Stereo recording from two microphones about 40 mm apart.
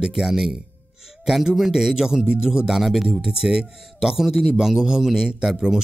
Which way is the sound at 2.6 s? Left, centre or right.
Centre.